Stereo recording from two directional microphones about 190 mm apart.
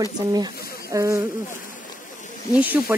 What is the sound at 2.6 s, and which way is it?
Speech, 10° right (ahead or behind).